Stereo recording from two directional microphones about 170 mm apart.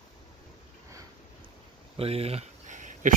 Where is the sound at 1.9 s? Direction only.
35° right (ahead or behind).